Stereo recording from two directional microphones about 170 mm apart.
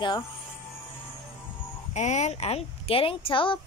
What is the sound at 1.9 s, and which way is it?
Speech, 45° left (ahead or behind).